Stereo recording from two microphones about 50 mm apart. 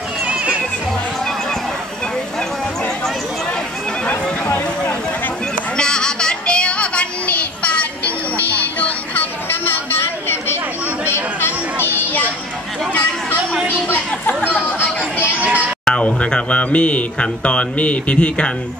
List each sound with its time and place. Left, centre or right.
4.1 s a sound: left
5.8 s child singing: centre; by 10.6 s left
11.4 s music: left
13.8 s chatter: left
15.4 s a sound: right
15.8 s music: left